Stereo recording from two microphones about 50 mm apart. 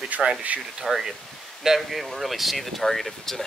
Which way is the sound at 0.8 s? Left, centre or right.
Centre.